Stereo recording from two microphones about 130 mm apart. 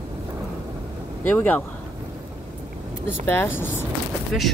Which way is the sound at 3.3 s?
15° left (ahead or behind).